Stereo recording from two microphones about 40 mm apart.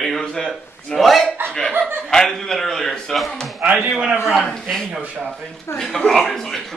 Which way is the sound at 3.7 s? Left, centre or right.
Right.